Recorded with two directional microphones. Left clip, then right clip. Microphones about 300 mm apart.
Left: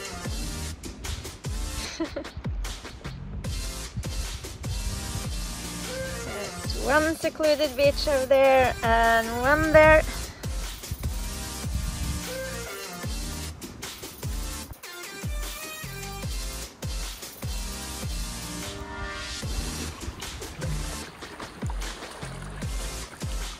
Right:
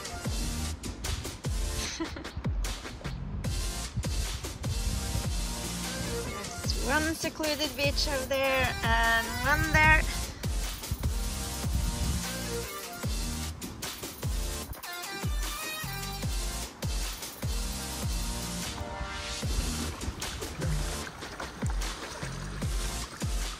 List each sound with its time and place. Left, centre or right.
6.7 s speech: centre